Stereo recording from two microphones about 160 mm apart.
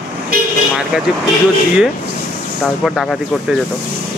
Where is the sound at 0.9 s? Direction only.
5° right (ahead or behind).